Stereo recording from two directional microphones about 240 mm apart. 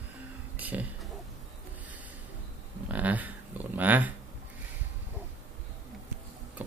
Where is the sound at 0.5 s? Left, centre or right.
Centre.